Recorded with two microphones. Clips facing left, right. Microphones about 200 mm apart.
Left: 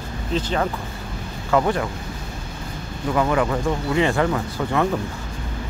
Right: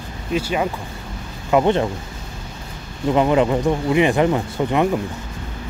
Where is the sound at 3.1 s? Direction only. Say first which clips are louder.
Right 4 dB; 20° right (ahead or behind).